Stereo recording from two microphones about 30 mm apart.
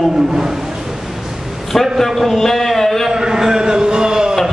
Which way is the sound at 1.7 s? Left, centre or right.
Centre.